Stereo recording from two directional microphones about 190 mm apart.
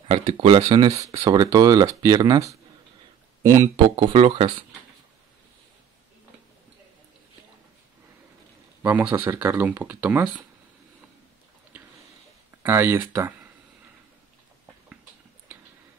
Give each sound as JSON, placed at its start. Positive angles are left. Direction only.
{"t": 0.1, "sound": "speech", "side_deg": -35}
{"t": 0.6, "sound": "speech", "side_deg": -20}
{"t": 8.8, "sound": "speech", "side_deg": -10}
{"t": 12.6, "sound": "speech", "side_deg": -10}